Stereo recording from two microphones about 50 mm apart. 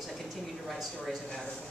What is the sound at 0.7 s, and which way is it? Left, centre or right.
Speech, centre.